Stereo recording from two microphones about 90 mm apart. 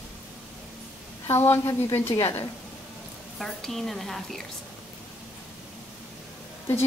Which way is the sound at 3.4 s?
5° left (ahead or behind).